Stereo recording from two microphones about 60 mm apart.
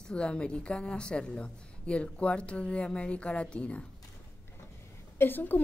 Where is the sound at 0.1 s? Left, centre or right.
Centre.